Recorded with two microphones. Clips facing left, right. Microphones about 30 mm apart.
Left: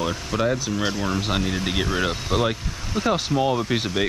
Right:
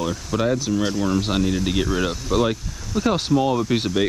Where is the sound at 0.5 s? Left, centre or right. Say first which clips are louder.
Right 3 dB; centre.